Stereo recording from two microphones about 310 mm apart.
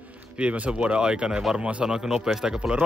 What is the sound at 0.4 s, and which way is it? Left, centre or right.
Speech, centre.